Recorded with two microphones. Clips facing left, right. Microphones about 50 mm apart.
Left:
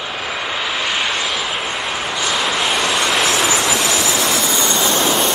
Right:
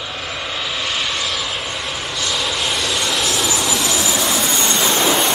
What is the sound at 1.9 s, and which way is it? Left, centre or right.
Vehicle, left.